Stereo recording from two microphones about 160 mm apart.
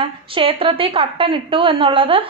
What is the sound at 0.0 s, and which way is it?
A woman's voice, 35° right (ahead or behind).